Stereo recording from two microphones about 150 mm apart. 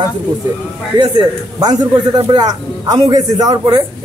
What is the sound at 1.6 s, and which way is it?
A man's voice, 25° right (ahead or behind).